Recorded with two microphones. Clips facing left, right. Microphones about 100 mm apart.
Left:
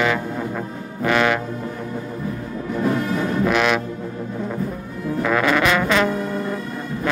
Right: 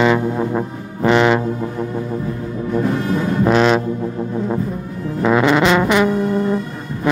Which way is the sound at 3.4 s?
35° right (ahead or behind).